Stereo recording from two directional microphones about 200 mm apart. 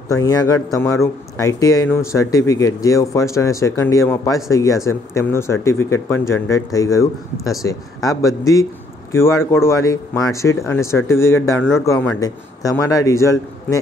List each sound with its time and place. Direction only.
0.1 s speech: 15° left (ahead or behind)